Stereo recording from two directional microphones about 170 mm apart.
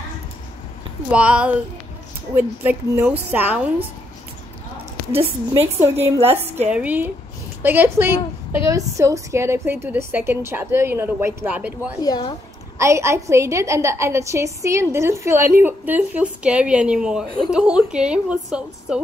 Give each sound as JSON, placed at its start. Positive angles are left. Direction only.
{"t": 1.1, "sound": "a woman's voice", "side_deg": -5}
{"t": 5.6, "sound": "a woman's voice", "side_deg": -35}
{"t": 6.2, "sound": "a woman's voice", "side_deg": -15}
{"t": 12.0, "sound": "a woman's voice", "side_deg": 25}
{"t": 12.7, "sound": "a woman's voice", "side_deg": -15}